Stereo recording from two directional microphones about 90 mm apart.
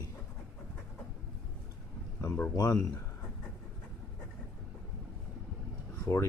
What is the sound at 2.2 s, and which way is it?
Speech, 25° left (ahead or behind).